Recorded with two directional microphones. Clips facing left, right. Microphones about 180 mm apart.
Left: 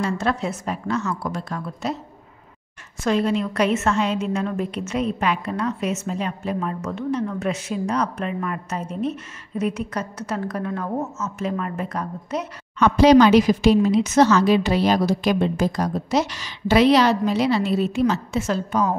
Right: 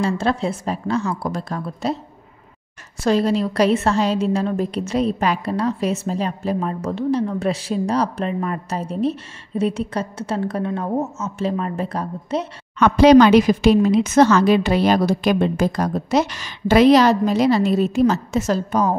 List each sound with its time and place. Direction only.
0.0 s a woman's voice: 30° right (ahead or behind)
3.0 s a woman's voice: 35° right (ahead or behind)
12.7 s speech: 60° right (ahead or behind); by 18.9 s 40° right (ahead or behind)